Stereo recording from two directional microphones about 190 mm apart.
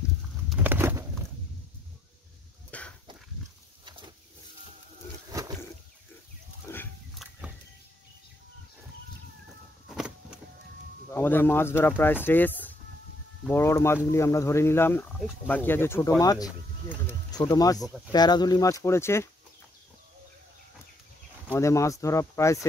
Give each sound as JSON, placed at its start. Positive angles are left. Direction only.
{"t": 0.5, "sound": "bird", "side_deg": -10}
{"t": 2.7, "sound": "a sound", "side_deg": 5}
{"t": 3.8, "sound": "a sound", "side_deg": -25}
{"t": 6.7, "sound": "biting", "side_deg": 15}
{"t": 7.2, "sound": "a sound", "side_deg": -5}
{"t": 9.8, "sound": "vehicle", "side_deg": -5}
{"t": 11.1, "sound": "speech", "side_deg": 10}
{"t": 17.7, "sound": "speech", "side_deg": 0}
{"t": 18.1, "sound": "speech", "side_deg": 20}
{"t": 21.5, "sound": "speech", "side_deg": 15}